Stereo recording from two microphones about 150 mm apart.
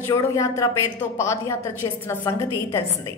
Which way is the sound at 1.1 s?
20° left (ahead or behind).